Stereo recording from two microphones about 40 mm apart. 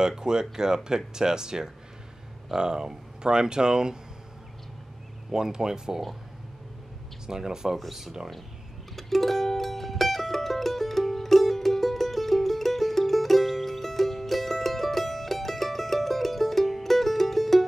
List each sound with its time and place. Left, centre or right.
0.0 s speech: centre
5.3 s speech: centre
7.2 s speech: centre
8.9 s music: centre